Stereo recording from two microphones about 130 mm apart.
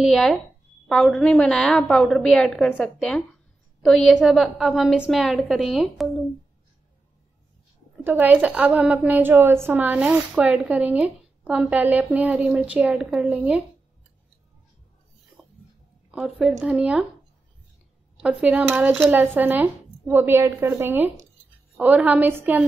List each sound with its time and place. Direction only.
0.0 s a woman's voice: centre (ahead or behind)
8.0 s a woman's voice: 15° right (ahead or behind)
16.1 s a woman's voice: 5° right (ahead or behind)
18.2 s a woman's voice: 10° right (ahead or behind)